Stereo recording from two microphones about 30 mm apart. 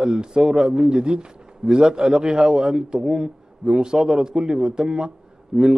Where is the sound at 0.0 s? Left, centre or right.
Right.